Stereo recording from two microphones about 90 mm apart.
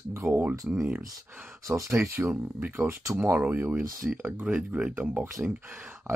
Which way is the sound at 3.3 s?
20° right (ahead or behind).